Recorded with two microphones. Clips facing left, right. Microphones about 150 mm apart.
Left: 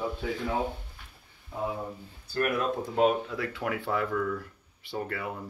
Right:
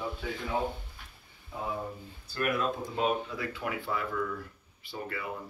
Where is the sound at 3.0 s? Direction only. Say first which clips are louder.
Left 6 dB; 70° left (ahead or behind).